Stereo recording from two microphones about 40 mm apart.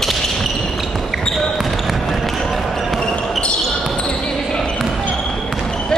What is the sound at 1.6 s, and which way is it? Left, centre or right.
Basketball bounce, centre.